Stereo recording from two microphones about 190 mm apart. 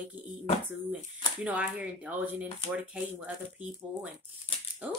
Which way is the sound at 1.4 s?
5° right (ahead or behind).